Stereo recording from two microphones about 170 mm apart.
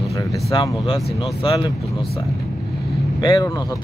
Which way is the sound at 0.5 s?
30° left (ahead or behind).